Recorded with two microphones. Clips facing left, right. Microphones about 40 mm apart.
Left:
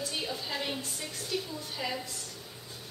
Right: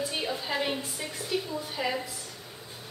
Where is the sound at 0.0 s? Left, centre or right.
Centre.